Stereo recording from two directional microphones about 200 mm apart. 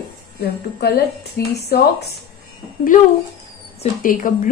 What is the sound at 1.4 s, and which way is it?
Speech, 50° left (ahead or behind).